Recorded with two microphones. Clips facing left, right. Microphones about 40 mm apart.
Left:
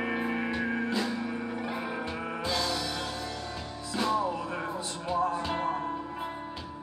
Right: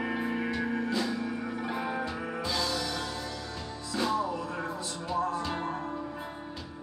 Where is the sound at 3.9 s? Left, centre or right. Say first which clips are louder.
Left 1 dB; left.